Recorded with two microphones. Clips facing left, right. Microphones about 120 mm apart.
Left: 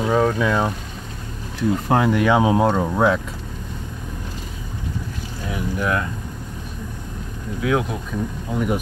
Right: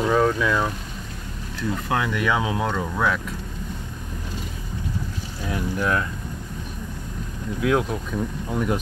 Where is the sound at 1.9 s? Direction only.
35° left (ahead or behind).